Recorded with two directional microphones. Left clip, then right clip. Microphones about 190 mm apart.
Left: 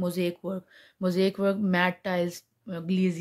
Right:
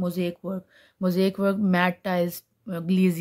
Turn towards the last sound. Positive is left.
turn(degrees=-25)  # may be behind; listen again after turning